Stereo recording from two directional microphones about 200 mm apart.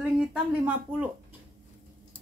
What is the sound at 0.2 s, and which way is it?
Speech, 5° right (ahead or behind).